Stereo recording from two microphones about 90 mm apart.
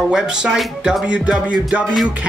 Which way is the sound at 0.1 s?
10° right (ahead or behind).